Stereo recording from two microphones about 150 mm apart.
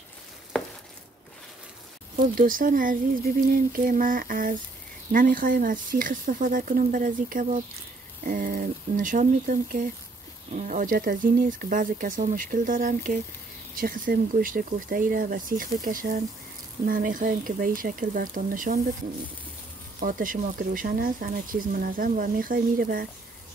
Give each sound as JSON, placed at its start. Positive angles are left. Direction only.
{"t": 2.1, "sound": "speech", "side_deg": -65}
{"t": 8.2, "sound": "speech", "side_deg": -75}
{"t": 20.0, "sound": "speech", "side_deg": -65}